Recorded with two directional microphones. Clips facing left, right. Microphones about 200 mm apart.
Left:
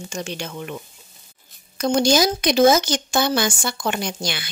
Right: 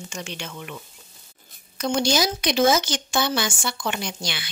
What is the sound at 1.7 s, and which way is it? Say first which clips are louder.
Speech: left 5 dB; 45° left (ahead or behind).